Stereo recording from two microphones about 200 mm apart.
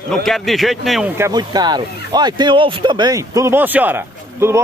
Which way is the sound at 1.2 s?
20° right (ahead or behind).